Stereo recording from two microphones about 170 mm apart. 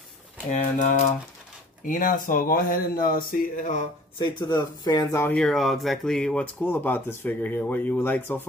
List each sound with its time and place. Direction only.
0.5 s speech: 45° left (ahead or behind)
4.2 s speech: 25° left (ahead or behind)
5.4 s speech: centre (ahead or behind)